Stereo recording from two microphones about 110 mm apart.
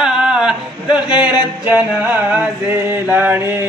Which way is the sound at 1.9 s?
15° right (ahead or behind).